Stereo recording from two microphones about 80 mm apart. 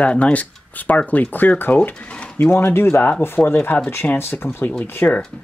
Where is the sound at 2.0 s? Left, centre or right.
Centre.